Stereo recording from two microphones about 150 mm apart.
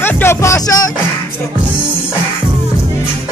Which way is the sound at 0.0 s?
15° left (ahead or behind).